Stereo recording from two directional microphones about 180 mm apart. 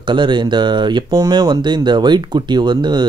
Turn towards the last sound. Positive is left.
turn(degrees=-25)  # may be behind; listen again after turning